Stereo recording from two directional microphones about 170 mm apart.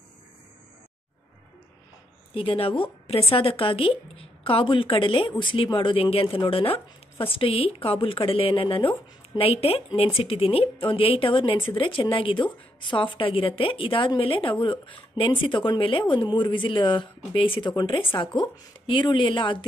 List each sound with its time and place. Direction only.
2.3 s speech: 35° left (ahead or behind)